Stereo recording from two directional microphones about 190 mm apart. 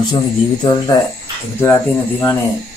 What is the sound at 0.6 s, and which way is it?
A man's voice, 20° left (ahead or behind).